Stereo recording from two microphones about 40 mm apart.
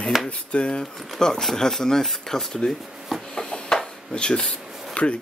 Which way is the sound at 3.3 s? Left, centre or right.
Centre.